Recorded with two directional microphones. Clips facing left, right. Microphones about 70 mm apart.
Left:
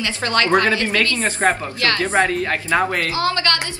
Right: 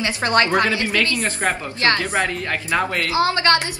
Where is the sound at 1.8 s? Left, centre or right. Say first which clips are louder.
Right 1 dB; right.